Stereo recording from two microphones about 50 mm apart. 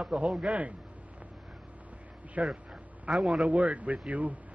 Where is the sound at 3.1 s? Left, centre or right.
Centre.